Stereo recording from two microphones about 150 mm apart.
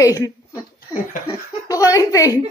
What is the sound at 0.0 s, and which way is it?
Child singing, 25° left (ahead or behind).